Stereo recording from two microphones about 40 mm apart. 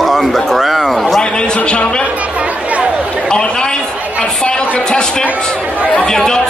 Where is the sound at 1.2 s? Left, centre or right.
Left.